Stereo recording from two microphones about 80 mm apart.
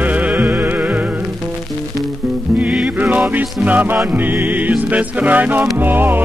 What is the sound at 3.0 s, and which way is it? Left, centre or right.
Music, right.